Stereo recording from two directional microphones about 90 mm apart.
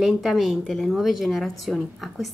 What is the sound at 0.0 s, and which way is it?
A woman's voice, centre (ahead or behind).